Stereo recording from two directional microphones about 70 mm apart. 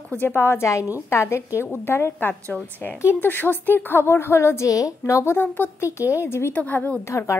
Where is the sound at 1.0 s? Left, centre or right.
Left.